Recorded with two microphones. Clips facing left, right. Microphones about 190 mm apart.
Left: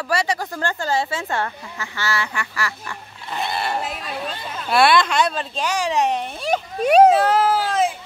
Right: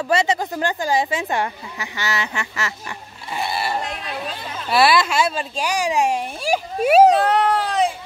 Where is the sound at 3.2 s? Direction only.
10° right (ahead or behind).